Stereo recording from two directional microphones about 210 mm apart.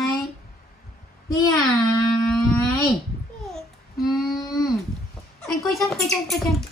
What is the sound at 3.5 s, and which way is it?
Child singing, centre (ahead or behind).